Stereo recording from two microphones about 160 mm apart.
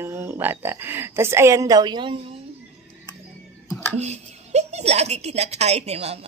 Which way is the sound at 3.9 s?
45° right (ahead or behind).